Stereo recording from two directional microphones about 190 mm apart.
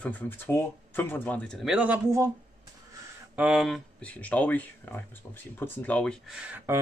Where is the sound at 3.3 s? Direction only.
5° right (ahead or behind).